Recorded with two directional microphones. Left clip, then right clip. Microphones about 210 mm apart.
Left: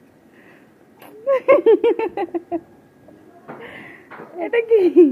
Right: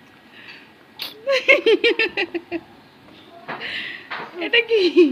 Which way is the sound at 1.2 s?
10° left (ahead or behind).